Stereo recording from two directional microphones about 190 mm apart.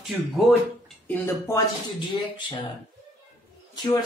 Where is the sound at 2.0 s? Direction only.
25° left (ahead or behind).